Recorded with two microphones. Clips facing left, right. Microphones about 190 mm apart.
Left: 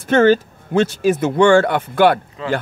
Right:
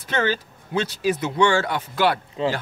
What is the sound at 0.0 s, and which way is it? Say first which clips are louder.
Speech: left 11 dB; 50° left (ahead or behind).